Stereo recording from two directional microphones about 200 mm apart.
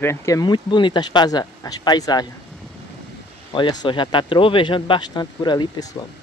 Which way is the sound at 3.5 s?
20° left (ahead or behind).